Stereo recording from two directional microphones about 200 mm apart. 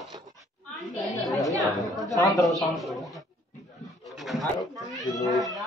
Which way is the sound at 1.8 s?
Centre (ahead or behind).